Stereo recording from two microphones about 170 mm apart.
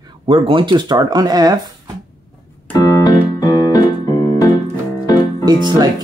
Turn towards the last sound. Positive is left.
turn(degrees=-25)  # may be behind; listen again after turning